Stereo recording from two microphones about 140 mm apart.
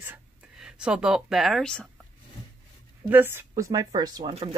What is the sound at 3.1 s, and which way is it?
Speech, 15° right (ahead or behind).